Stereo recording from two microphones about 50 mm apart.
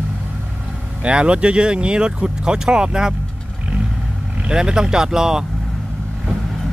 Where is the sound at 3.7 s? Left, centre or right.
Right.